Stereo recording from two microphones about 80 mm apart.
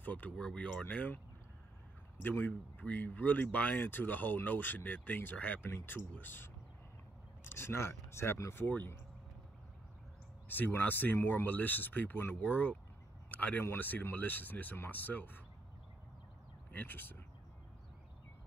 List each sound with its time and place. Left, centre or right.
0.0 s speech: centre
2.2 s speech: left
8.6 s speech: left
10.5 s speech: left
16.7 s speech: left